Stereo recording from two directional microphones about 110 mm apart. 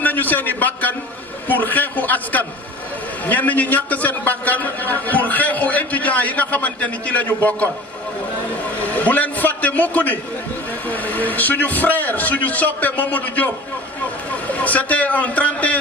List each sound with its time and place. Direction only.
0.0 s a man's voice: 15° left (ahead or behind)
1.5 s a sound: 15° left (ahead or behind)
3.3 s a man's voice: 15° left (ahead or behind)
8.8 s a man's voice: 15° left (ahead or behind)